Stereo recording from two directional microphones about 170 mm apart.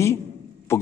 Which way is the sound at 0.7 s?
15° left (ahead or behind).